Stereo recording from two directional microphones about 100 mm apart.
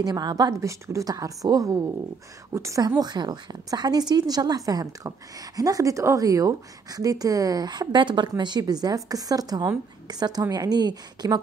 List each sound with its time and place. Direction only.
0.0 s a woman's voice: 40° right (ahead or behind)
3.0 s a woman's voice: 45° right (ahead or behind)